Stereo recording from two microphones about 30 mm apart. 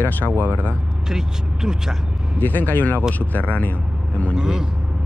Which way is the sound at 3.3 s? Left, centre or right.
Left.